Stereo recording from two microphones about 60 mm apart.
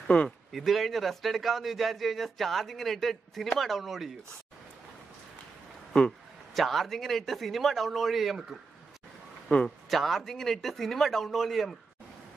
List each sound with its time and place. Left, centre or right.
0.1 s a man's voice: centre
0.5 s a man's voice: centre
6.5 s a man's voice: centre
9.5 s a man's voice: left
9.8 s a man's voice: centre